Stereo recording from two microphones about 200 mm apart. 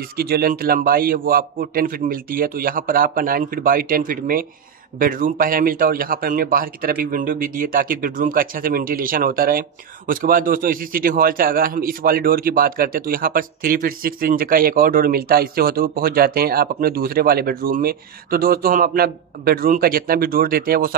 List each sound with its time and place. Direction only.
0.2 s speech: 50° right (ahead or behind)